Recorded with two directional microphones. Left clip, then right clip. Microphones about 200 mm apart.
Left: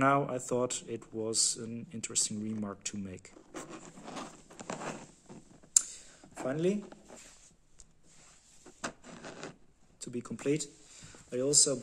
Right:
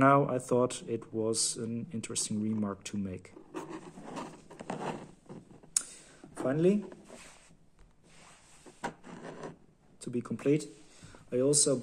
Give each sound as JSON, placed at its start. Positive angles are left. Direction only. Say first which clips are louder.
{"t": 0.0, "sound": "speech", "louder": "right 3 dB", "side_deg": 5}
{"t": 3.5, "sound": "a sound", "louder": "right 3 dB", "side_deg": 15}
{"t": 6.3, "sound": "speech", "louder": "right 4 dB", "side_deg": 5}
{"t": 8.8, "sound": "wood", "louder": "right 2 dB", "side_deg": 15}
{"t": 9.9, "sound": "speech", "louder": "right 4 dB", "side_deg": 5}